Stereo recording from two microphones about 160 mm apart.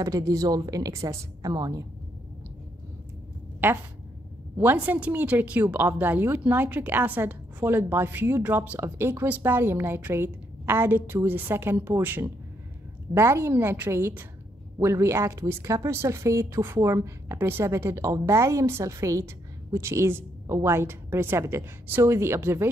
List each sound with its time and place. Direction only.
0.0 s a woman's voice: 20° right (ahead or behind)
3.6 s a woman's voice: 15° right (ahead or behind)